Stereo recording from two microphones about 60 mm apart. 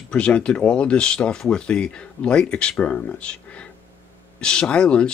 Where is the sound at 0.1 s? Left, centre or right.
Centre.